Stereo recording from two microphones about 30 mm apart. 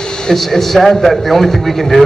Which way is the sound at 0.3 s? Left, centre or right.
Centre.